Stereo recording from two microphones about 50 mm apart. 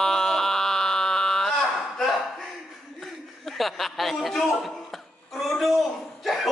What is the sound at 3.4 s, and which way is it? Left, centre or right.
Chuckle, centre.